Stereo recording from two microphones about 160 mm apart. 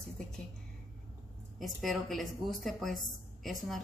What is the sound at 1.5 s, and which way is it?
Speech, centre (ahead or behind).